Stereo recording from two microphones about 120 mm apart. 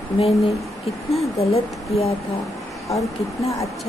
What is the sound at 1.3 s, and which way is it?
Speech, 60° left (ahead or behind).